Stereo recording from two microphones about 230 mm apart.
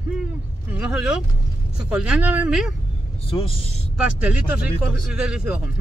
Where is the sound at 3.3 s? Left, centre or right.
Left.